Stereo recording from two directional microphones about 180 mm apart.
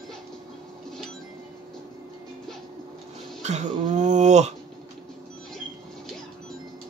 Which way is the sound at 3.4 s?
40° right (ahead or behind).